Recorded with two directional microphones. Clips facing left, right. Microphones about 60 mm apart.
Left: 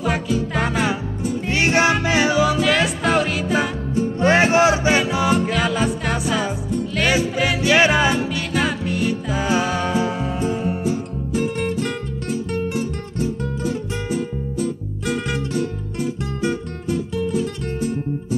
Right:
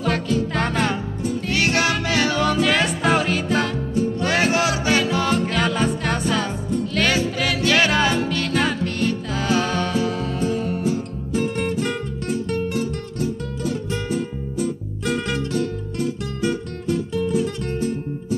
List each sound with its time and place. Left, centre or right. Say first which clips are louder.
0.0 s music: even; centre
1.5 s music: left 4 dB; left
2.3 s music: left 2 dB; centre
4.2 s music: left 7 dB; left
11.5 s music: even; centre
12.4 s music: even; centre
15.0 s music: even; centre